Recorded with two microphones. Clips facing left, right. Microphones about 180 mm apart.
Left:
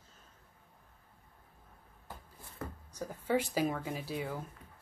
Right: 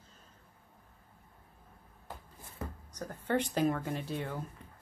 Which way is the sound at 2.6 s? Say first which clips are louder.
Right 1 dB; 20° right (ahead or behind).